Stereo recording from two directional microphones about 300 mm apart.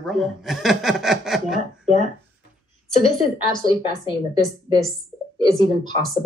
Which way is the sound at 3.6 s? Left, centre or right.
Centre.